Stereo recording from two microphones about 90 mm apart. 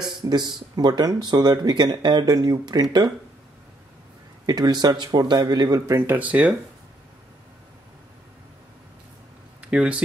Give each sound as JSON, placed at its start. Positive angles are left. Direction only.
{"t": 0.0, "sound": "speech", "side_deg": -50}
{"t": 4.5, "sound": "speech", "side_deg": -50}
{"t": 5.9, "sound": "speech", "side_deg": -25}
{"t": 9.6, "sound": "speech", "side_deg": -10}